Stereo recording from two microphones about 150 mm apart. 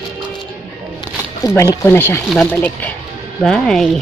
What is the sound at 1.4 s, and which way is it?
Speech, 20° left (ahead or behind).